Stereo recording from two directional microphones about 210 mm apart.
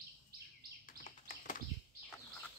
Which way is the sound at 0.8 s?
40° left (ahead or behind).